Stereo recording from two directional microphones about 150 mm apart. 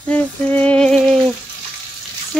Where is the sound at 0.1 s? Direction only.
10° left (ahead or behind).